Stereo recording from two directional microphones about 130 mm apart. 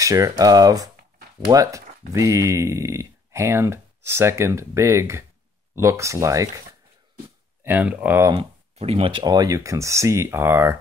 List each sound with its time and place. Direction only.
0.0 s speech: 25° right (ahead or behind)
7.6 s speech: 10° right (ahead or behind)
8.7 s speech: 50° right (ahead or behind); by 10.8 s 20° right (ahead or behind)